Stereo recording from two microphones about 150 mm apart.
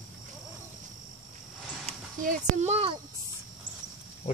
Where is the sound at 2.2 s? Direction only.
60° right (ahead or behind).